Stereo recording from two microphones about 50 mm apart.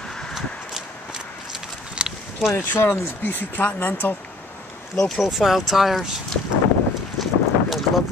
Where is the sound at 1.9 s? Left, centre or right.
Centre.